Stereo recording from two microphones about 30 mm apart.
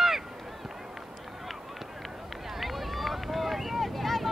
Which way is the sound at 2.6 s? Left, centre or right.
Centre.